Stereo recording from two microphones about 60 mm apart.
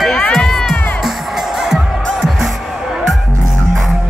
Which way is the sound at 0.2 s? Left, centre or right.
Centre.